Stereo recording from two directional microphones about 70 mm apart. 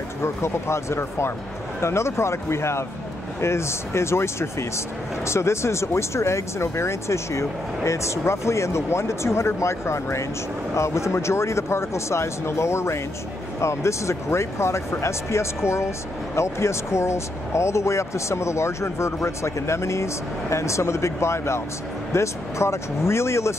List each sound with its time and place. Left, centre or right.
0.2 s speech: left